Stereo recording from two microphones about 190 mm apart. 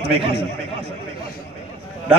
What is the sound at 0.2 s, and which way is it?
Speech, 30° right (ahead or behind).